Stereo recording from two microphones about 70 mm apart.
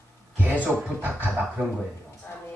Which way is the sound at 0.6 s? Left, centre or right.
Right.